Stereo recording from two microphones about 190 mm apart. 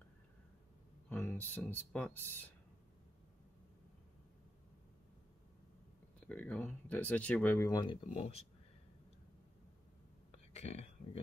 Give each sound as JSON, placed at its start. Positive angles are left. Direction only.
{"t": 1.0, "sound": "speech", "side_deg": 10}
{"t": 6.2, "sound": "speech", "side_deg": 5}
{"t": 10.3, "sound": "a sound", "side_deg": 35}